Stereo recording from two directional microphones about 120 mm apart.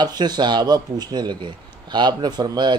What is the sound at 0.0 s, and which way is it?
Speech, 35° right (ahead or behind).